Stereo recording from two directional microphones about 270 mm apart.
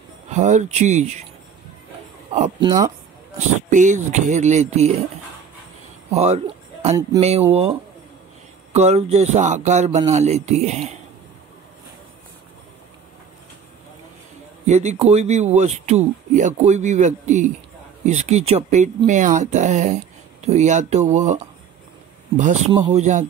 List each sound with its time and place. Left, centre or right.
0.3 s speech: right
2.3 s speech: right
6.0 s a sound: right
7.2 s speech: right
8.7 s speech: right
14.7 s speech: right
22.4 s speech: right